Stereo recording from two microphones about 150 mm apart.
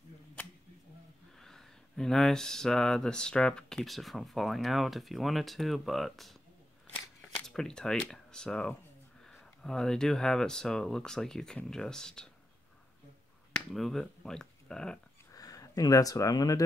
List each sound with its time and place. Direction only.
1.4 s speech: 5° left (ahead or behind)
7.4 s speech: 5° left (ahead or behind)
13.5 s speech: centre (ahead or behind)
15.3 s speech: 25° left (ahead or behind)